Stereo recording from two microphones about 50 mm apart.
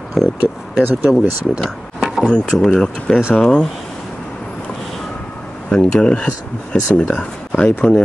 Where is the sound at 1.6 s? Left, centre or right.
Centre.